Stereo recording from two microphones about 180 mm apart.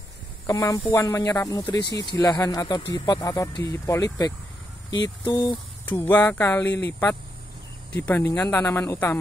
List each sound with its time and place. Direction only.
0.5 s speech: 20° left (ahead or behind)
5.9 s speech: 10° left (ahead or behind)